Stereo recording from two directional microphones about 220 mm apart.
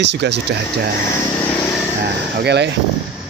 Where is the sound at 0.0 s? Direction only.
50° right (ahead or behind).